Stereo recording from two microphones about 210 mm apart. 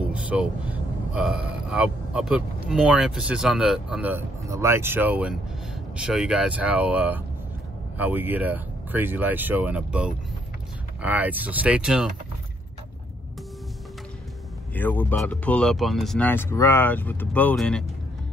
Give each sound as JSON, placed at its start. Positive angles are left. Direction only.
{"t": 0.1, "sound": "speech", "side_deg": -5}
{"t": 14.7, "sound": "speech", "side_deg": 10}